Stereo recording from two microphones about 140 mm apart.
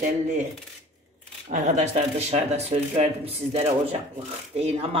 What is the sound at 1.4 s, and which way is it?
Speech, 60° right (ahead or behind).